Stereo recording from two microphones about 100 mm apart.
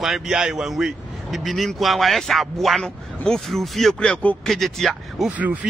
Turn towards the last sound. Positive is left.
turn(degrees=-15)  # may be behind; listen again after turning